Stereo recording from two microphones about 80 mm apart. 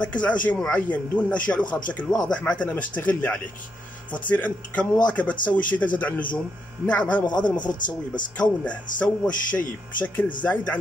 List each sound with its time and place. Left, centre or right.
0.0 s speech: centre
7.2 s a man's voice: left
8.1 s speech: centre